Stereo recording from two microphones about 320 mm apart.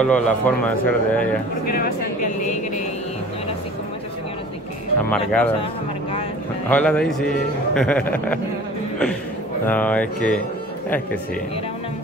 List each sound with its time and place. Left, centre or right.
0.0 s a man's voice: centre
5.1 s a man's voice: centre
6.7 s a man's voice: centre
9.7 s a man's voice: centre